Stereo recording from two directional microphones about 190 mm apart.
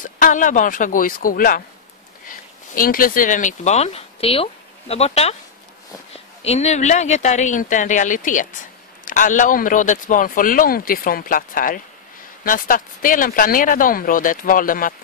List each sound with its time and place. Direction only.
0.0 s speech: 45° left (ahead or behind)
6.4 s speech: 35° left (ahead or behind)